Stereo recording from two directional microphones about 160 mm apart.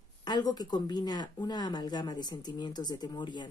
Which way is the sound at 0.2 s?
25° left (ahead or behind).